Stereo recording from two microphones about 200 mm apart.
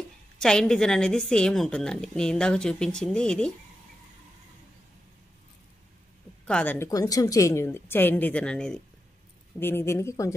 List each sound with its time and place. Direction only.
0.4 s a woman's voice: 5° left (ahead or behind)
6.4 s a woman's voice: 5° left (ahead or behind)